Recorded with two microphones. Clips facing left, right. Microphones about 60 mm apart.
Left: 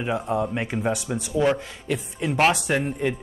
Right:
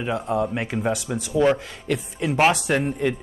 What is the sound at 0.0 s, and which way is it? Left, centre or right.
Speech, centre.